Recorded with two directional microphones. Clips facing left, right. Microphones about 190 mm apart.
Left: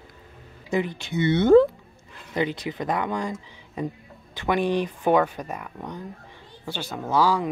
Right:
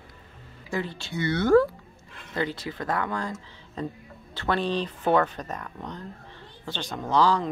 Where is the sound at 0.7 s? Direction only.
15° left (ahead or behind).